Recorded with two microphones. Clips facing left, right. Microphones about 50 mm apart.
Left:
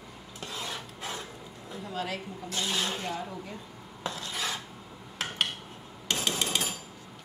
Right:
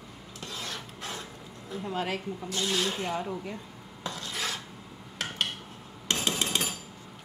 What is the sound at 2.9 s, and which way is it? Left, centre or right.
Speech, centre.